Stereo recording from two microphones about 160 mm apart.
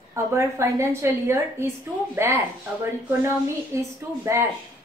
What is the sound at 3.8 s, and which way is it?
Speech, 15° right (ahead or behind).